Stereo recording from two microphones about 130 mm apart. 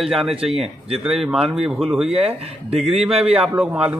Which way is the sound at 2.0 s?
50° right (ahead or behind).